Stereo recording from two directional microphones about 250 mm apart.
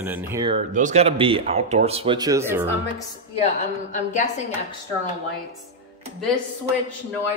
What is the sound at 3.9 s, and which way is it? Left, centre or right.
Speech, left.